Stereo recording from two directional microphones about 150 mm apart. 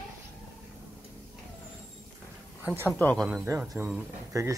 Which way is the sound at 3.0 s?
10° left (ahead or behind).